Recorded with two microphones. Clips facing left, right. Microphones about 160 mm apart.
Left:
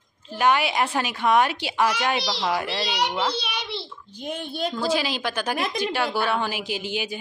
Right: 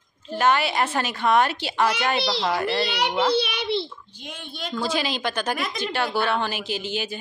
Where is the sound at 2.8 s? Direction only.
55° right (ahead or behind).